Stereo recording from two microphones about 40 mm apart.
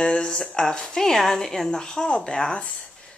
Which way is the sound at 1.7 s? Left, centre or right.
Centre.